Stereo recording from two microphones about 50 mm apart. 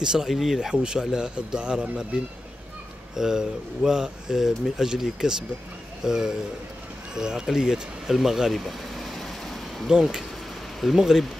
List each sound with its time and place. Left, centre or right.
0.0 s speech: centre
3.2 s speech: centre
7.2 s vehicle: centre
9.8 s speech: centre